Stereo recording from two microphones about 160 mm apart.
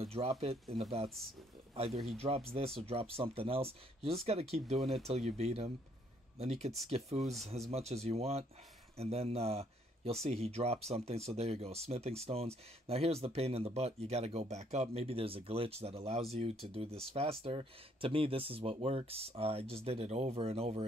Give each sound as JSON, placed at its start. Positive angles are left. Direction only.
{"t": 0.0, "sound": "speech", "side_deg": -40}
{"t": 1.9, "sound": "speech", "side_deg": 0}
{"t": 2.1, "sound": "speech", "side_deg": -40}